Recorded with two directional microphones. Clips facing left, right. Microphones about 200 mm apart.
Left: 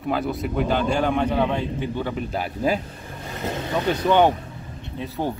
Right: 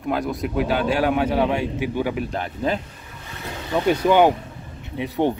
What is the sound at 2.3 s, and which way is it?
Speech, 10° left (ahead or behind).